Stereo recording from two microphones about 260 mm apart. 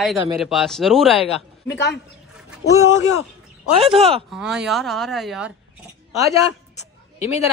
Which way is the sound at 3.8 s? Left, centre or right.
Right.